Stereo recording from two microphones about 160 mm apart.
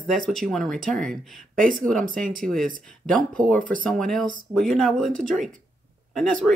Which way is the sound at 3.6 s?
55° right (ahead or behind).